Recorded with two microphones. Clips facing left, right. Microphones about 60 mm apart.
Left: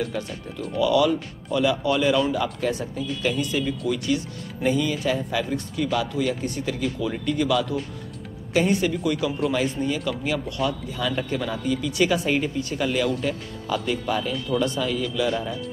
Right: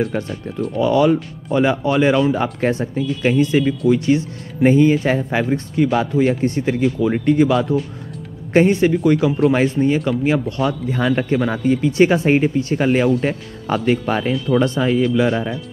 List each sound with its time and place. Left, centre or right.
0.7 s speech: right